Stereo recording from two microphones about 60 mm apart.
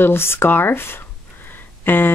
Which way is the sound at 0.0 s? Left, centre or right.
Left.